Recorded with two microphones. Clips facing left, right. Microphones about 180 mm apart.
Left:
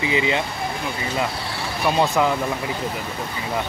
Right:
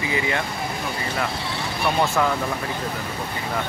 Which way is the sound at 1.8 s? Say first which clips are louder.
Left 2 dB; 20° left (ahead or behind).